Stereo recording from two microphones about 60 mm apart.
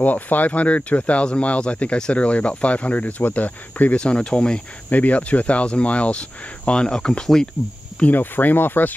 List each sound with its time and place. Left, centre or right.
0.0 s speech: left
4.0 s speech: centre
4.9 s speech: left; by 7.4 s centre
8.0 s speech: left